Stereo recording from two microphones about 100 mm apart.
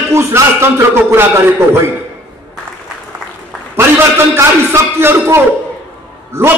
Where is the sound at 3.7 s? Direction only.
25° right (ahead or behind).